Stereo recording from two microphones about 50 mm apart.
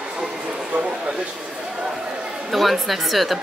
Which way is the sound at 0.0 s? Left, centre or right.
Centre.